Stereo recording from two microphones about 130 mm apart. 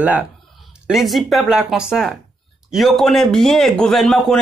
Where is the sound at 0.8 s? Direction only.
Centre (ahead or behind).